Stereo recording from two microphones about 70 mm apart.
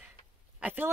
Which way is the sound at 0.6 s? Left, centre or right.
Right.